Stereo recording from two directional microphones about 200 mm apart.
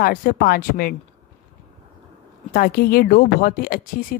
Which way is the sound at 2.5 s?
45° left (ahead or behind).